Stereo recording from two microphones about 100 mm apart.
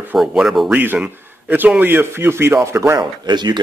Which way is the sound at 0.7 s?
20° right (ahead or behind).